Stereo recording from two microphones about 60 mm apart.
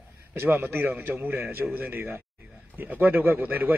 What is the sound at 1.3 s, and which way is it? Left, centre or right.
A man's voice, right.